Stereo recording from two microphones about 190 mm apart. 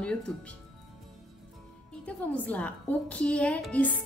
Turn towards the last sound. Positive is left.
turn(degrees=5)  # may be behind; listen again after turning